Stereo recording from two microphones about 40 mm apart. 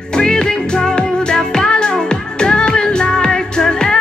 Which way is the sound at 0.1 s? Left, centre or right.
Left.